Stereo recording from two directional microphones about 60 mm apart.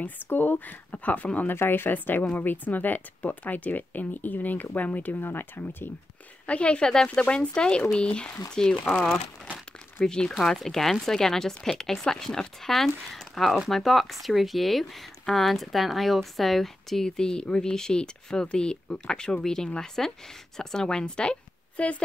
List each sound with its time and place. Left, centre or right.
0.0 s speech: left
1.5 s speech: left
6.4 s a woman's voice: left